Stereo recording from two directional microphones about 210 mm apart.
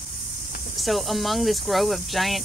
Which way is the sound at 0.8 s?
Centre (ahead or behind).